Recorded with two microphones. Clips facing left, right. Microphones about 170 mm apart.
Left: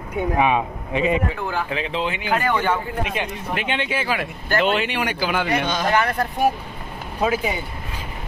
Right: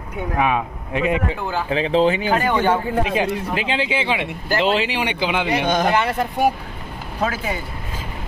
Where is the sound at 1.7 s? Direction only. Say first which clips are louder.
Right 8 dB; 35° right (ahead or behind); by 5.7 s 15° right (ahead or behind).